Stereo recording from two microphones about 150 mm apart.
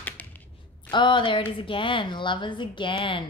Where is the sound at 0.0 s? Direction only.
10° left (ahead or behind).